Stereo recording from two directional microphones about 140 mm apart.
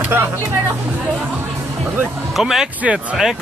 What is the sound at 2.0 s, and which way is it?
Speech, centre (ahead or behind).